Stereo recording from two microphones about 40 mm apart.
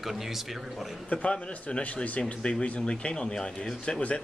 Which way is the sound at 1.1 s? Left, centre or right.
Left.